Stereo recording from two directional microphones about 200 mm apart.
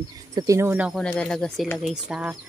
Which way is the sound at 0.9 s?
5° left (ahead or behind).